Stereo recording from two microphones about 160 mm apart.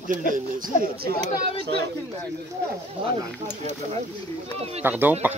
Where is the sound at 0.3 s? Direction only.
60° right (ahead or behind).